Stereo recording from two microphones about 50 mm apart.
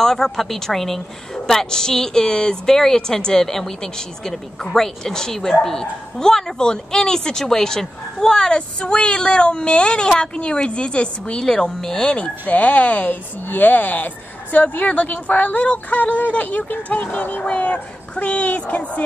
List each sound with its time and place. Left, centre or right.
0.0 s a woman's voice: centre
12.4 s speech: left
13.5 s a woman's voice: left